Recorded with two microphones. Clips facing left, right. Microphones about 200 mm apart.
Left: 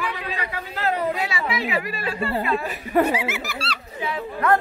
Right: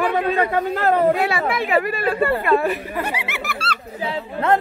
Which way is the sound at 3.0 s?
60° right (ahead or behind).